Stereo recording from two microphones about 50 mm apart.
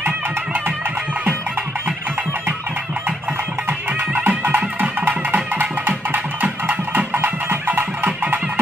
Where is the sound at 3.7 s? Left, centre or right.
Right.